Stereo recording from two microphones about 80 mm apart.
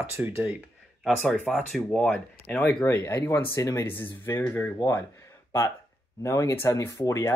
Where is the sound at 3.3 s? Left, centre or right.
Left.